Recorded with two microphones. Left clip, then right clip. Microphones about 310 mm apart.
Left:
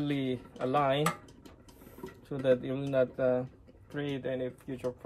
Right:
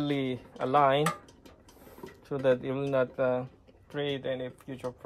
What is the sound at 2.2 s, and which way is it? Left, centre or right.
Speech, centre.